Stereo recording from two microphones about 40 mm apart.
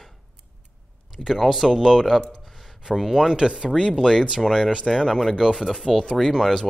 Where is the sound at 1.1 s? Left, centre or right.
Centre.